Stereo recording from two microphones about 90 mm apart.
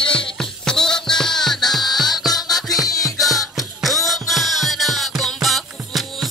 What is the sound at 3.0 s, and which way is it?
Music, centre (ahead or behind).